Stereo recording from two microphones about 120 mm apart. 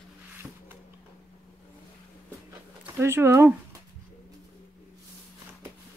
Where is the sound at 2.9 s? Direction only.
20° right (ahead or behind).